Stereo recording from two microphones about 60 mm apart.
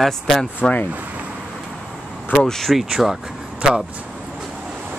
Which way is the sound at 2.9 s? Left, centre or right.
Centre.